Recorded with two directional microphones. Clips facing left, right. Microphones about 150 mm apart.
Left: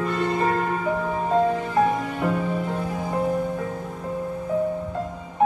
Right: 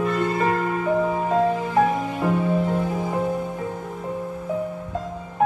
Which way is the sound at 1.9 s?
15° right (ahead or behind).